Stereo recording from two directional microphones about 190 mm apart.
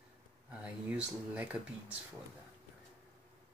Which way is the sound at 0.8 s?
5° right (ahead or behind).